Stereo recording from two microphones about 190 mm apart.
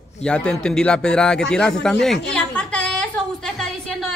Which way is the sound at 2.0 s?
5° left (ahead or behind).